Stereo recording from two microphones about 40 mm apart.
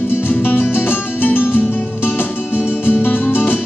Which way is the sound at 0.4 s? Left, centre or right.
Left.